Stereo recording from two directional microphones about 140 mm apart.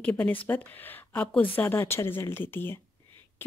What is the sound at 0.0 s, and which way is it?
Speech, 10° left (ahead or behind).